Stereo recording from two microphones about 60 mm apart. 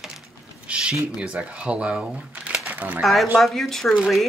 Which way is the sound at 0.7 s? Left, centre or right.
Right.